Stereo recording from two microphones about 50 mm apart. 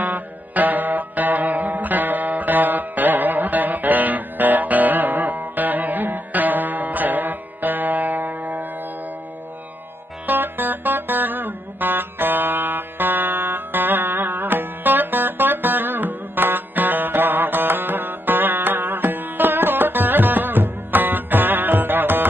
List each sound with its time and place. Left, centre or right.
0.0 s music: right
10.2 s music: right